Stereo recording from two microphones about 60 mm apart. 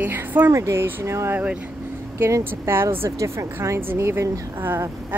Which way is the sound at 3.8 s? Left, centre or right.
Right.